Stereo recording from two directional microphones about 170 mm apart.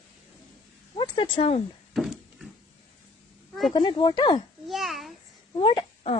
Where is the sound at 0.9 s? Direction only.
30° left (ahead or behind).